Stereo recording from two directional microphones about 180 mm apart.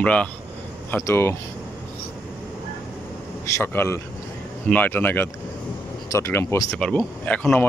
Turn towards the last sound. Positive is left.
turn(degrees=10)  # may be behind; listen again after turning